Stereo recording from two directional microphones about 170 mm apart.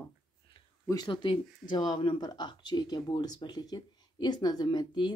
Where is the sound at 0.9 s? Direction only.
25° left (ahead or behind).